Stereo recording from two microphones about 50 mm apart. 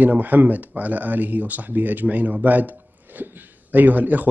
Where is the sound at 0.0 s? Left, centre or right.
Right.